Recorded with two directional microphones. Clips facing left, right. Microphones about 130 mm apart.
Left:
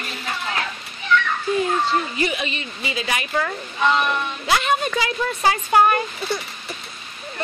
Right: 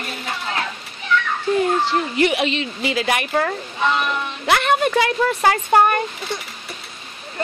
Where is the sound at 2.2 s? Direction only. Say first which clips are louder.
Right 6 dB; 80° right; by 6.0 s 45° right (ahead or behind).